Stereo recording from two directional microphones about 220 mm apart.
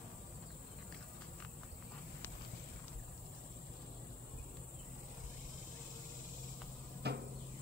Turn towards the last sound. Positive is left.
turn(degrees=-50)  # may be behind; listen again after turning